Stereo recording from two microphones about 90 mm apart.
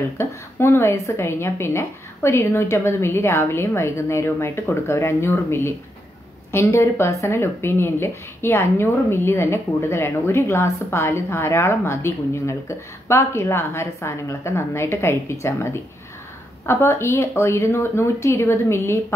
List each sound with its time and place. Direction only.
0.2 s a woman's voice: 30° left (ahead or behind)